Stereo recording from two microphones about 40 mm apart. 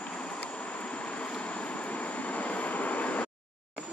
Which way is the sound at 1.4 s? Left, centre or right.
Left.